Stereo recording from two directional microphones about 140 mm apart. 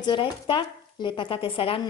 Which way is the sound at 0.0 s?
35° left (ahead or behind).